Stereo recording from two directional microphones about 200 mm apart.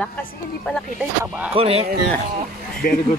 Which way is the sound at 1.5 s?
30° right (ahead or behind).